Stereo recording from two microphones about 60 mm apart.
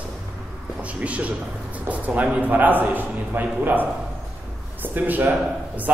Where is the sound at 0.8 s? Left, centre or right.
Right.